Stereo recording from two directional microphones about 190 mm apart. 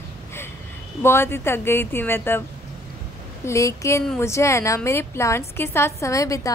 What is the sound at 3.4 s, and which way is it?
A woman's voice, 15° left (ahead or behind).